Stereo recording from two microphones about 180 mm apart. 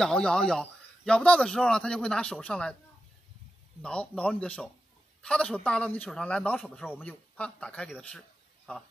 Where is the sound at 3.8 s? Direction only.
5° left (ahead or behind).